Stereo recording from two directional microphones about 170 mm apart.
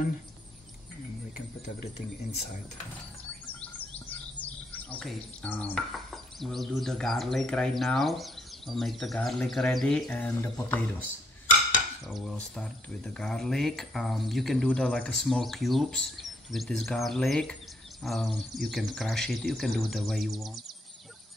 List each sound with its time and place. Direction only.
4.9 s speech: 5° left (ahead or behind)
12.1 s speech: 5° left (ahead or behind)